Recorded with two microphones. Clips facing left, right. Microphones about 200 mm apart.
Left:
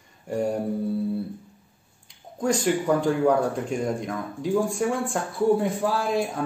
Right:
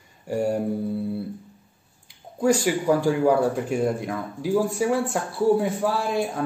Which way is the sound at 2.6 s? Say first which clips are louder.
Right 1 dB; 5° right (ahead or behind).